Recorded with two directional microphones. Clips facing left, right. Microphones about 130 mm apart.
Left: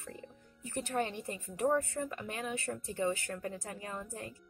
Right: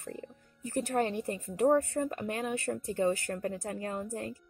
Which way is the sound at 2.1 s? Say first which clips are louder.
Right 5 dB; 45° right (ahead or behind).